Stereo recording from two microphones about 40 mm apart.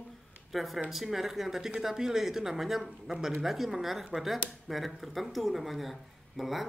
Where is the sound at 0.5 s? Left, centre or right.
Centre.